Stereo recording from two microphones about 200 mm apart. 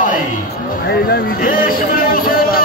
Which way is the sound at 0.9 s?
55° left (ahead or behind).